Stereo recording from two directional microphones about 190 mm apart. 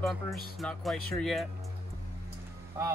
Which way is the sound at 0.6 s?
Centre (ahead or behind).